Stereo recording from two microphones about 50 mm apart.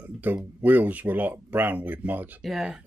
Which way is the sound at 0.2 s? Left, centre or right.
Right.